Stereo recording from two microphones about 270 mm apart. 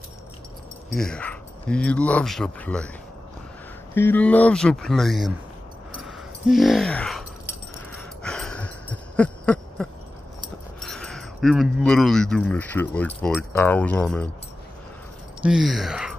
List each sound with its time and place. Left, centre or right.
0.9 s speech: centre
3.9 s speech: centre
6.0 s a sound: centre
10.8 s speech: centre
15.4 s speech: centre